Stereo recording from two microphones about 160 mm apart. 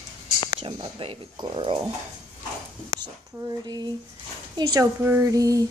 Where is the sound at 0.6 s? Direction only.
35° right (ahead or behind).